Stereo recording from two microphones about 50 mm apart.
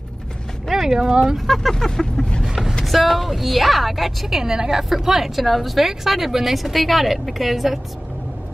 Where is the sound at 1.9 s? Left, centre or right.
Centre.